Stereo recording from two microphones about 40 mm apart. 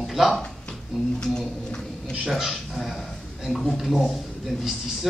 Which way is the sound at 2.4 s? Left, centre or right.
Centre.